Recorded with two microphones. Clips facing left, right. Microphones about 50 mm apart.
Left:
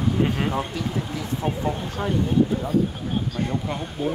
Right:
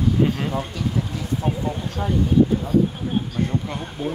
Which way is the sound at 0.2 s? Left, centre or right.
Centre.